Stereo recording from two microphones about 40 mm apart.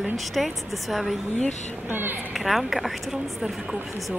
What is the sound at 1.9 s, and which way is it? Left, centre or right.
Speech, right.